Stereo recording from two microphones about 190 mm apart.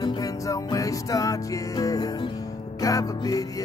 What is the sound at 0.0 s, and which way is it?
Music, 20° left (ahead or behind).